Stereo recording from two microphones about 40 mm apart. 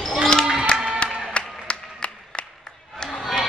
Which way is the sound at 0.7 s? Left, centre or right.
Left.